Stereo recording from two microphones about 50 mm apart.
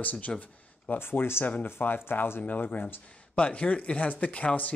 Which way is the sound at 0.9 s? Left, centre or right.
Left.